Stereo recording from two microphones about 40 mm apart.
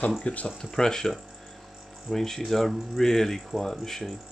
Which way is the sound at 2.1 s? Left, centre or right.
Centre.